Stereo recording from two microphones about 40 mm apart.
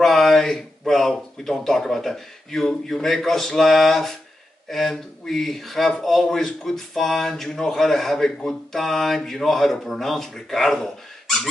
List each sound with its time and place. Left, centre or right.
0.0 s speech: centre